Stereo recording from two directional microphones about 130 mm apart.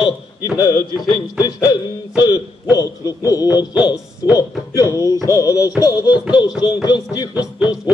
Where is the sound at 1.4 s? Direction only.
30° left (ahead or behind).